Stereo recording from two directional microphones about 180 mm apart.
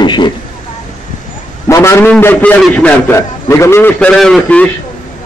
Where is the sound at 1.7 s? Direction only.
15° left (ahead or behind).